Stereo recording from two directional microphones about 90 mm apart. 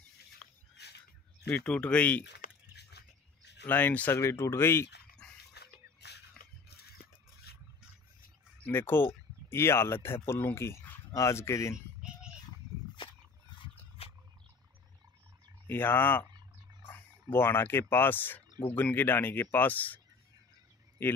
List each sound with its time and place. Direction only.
0.4 s a sound: 10° left (ahead or behind)
1.6 s speech: 15° left (ahead or behind)
3.6 s speech: 20° left (ahead or behind)
4.2 s speech: 30° left (ahead or behind)
5.2 s dog: 10° left (ahead or behind)
8.6 s speech: 25° left (ahead or behind)
12.0 s a sound: 10° right (ahead or behind)
14.0 s wild animals: 90° left
15.6 s speech: 25° left (ahead or behind)
17.3 s speech: 25° left (ahead or behind)
21.0 s a man's voice: 20° left (ahead or behind)